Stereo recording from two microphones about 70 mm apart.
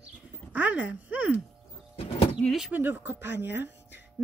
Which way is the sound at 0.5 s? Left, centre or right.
Right.